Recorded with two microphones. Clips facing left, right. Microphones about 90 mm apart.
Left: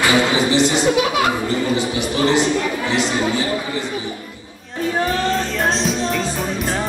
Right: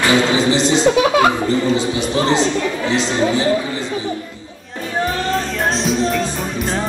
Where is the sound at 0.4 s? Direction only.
25° right (ahead or behind).